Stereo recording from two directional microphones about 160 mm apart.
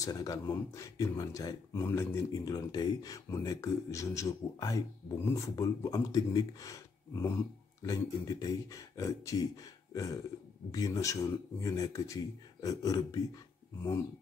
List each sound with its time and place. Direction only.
0.0 s speech: 20° left (ahead or behind)